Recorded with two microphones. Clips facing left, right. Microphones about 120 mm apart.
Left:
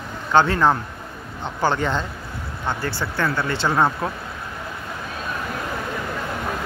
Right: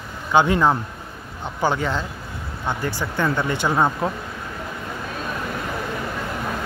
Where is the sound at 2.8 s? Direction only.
15° right (ahead or behind).